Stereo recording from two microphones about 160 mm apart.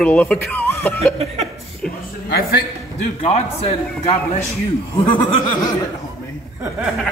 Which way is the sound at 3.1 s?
40° left (ahead or behind).